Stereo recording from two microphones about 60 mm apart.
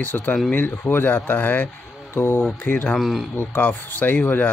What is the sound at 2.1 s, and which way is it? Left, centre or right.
Speech, left.